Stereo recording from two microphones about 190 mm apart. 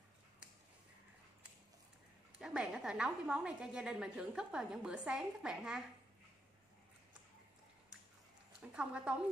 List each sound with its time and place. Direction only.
2.3 s a woman's voice: 5° right (ahead or behind)
8.5 s a woman's voice: 5° right (ahead or behind)